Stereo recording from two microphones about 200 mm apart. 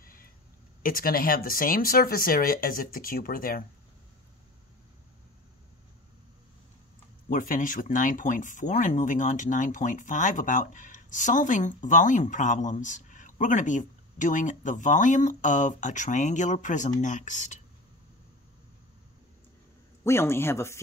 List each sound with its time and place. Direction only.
0.0 s a sound: 45° left (ahead or behind)
0.8 s speech: 45° left (ahead or behind)
7.2 s speech: 45° left (ahead or behind)
20.0 s speech: 15° left (ahead or behind)